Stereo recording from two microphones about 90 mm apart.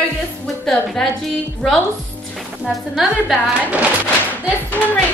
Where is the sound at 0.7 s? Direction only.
5° left (ahead or behind).